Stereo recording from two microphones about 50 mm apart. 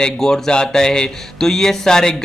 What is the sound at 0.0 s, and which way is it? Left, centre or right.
A man's voice, centre.